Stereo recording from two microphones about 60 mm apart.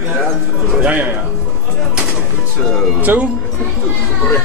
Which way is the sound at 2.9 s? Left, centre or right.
Right.